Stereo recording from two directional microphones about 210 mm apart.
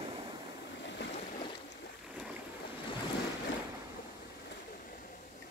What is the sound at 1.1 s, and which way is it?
Boat, 30° left (ahead or behind).